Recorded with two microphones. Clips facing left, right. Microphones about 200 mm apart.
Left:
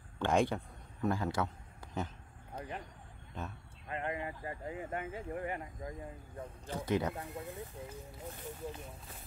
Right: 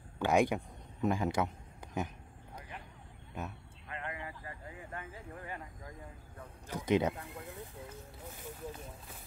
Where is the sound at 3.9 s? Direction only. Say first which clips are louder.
Left 5 dB; 30° left (ahead or behind).